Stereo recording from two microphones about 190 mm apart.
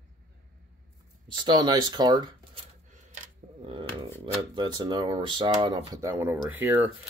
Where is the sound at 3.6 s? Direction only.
25° right (ahead or behind); by 6.9 s 10° right (ahead or behind).